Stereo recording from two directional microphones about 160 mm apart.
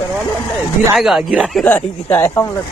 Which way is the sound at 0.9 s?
5° right (ahead or behind).